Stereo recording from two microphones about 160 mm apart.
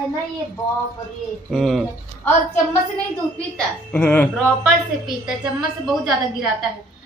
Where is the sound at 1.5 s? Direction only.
Centre (ahead or behind).